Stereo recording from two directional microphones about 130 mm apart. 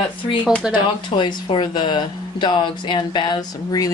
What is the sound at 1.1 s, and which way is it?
Speech, 35° left (ahead or behind).